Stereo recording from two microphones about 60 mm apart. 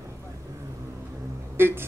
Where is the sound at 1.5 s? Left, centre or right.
Right.